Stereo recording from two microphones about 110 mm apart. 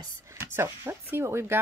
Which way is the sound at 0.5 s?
20° right (ahead or behind).